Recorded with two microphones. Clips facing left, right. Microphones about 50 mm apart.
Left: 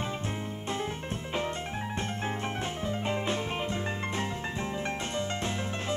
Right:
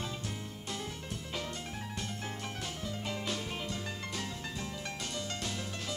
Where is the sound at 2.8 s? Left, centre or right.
Left.